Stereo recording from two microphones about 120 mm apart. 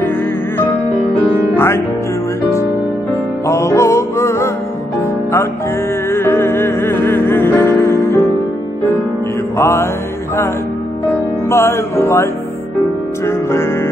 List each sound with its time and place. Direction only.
3.4 s music: 25° left (ahead or behind)
6.0 s music: 20° left (ahead or behind)
9.6 s music: 20° left (ahead or behind)
11.4 s music: 20° left (ahead or behind)